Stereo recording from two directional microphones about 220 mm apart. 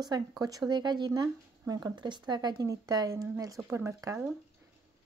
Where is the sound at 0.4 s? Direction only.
15° right (ahead or behind).